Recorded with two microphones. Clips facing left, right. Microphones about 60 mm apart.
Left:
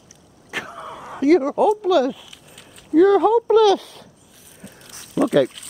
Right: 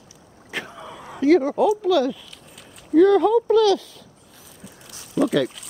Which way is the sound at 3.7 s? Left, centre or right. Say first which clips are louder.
Left 3 dB; left.